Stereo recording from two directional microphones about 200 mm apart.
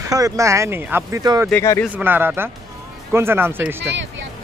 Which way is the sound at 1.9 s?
10° right (ahead or behind).